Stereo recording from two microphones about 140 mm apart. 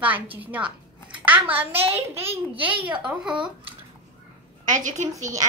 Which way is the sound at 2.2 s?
45° right (ahead or behind).